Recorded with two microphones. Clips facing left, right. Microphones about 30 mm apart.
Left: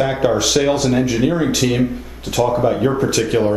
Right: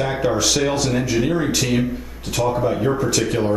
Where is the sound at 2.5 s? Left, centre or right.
Centre.